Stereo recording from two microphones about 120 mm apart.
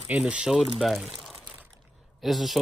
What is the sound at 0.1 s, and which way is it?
Speech, 10° right (ahead or behind).